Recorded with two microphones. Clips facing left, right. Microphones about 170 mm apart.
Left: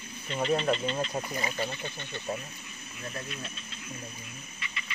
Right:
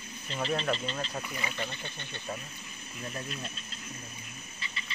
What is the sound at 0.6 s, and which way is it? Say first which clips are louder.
Speech: left 3 dB; centre (ahead or behind).